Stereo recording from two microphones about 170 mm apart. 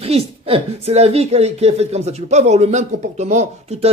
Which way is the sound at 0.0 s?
35° right (ahead or behind).